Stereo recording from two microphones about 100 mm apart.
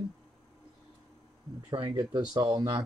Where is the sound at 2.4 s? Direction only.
35° right (ahead or behind).